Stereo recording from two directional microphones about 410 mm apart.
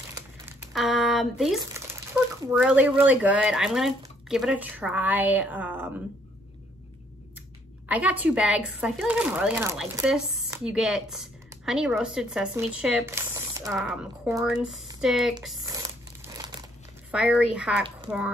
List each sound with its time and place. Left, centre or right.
0.1 s crumpling: centre
2.4 s speech: centre
7.9 s speech: centre
16.3 s crumpling: centre
17.1 s speech: centre